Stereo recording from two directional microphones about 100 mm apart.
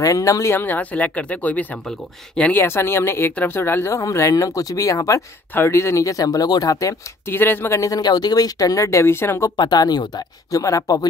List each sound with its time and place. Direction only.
0.0 s speech: 35° left (ahead or behind); by 2.5 s 10° left (ahead or behind)
2.5 s speech: 25° left (ahead or behind)
7.3 s speech: 20° left (ahead or behind)
9.6 s speech: 45° left (ahead or behind)